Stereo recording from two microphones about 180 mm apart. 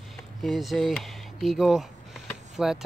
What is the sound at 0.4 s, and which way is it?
Speech, centre (ahead or behind).